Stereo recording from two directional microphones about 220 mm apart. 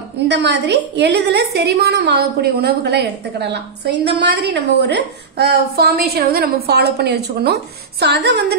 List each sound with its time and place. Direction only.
0.3 s a woman's voice: 50° right (ahead or behind)